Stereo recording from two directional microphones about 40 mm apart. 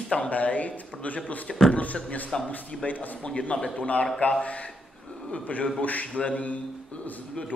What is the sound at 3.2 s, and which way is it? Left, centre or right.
A man's voice, left.